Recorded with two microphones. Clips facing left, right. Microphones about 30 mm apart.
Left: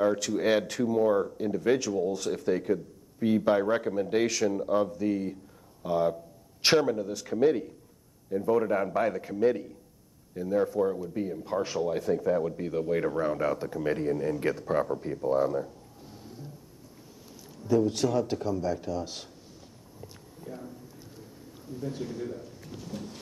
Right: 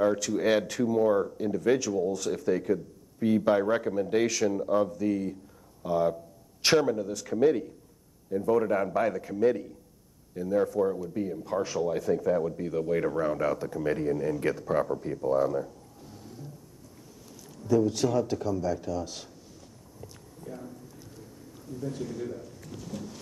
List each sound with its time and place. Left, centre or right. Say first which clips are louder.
0.2 s speech: even; centre
2.0 s speech: even; left
17.6 s speech: even; centre
20.0 s a sound: even; centre